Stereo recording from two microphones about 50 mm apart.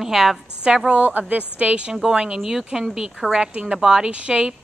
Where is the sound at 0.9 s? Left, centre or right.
Right; by 4.0 s centre.